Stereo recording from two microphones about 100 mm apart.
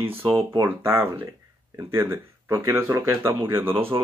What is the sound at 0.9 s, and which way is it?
Speech, 20° right (ahead or behind).